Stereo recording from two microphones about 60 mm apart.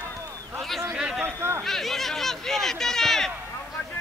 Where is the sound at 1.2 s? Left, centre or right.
Right.